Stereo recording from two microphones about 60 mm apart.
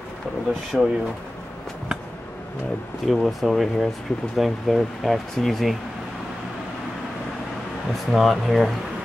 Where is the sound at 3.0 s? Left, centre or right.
Centre.